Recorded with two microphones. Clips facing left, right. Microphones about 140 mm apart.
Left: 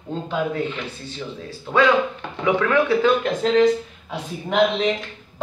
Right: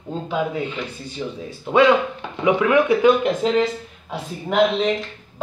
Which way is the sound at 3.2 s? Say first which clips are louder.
Left 2 dB; 5° right (ahead or behind).